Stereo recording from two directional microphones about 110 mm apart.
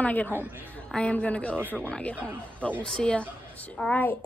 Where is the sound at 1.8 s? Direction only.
10° left (ahead or behind).